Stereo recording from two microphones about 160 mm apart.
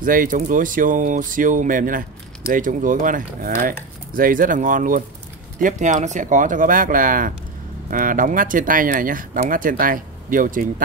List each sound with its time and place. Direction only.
0.0 s speech: 60° right (ahead or behind)